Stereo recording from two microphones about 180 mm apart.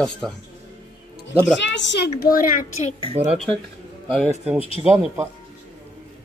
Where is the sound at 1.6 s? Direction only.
80° left; by 3.0 s 50° left (ahead or behind).